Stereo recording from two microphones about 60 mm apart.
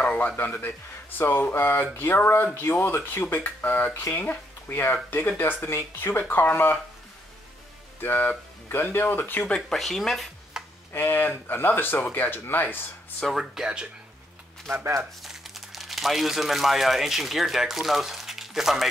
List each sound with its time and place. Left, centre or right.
0.0 s music: left
0.4 s speech: left
8.0 s speech: left
9.8 s speech: centre
10.6 s tick-tock: centre
11.0 s speech: left
13.3 s speech: centre
14.7 s speech: right
15.2 s speech: centre